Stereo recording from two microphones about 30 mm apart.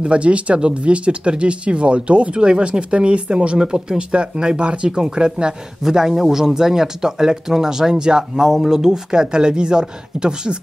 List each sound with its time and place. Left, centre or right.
0.0 s speech: right
5.9 s a man's voice: centre